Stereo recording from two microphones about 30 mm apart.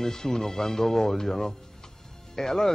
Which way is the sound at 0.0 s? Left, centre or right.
Centre.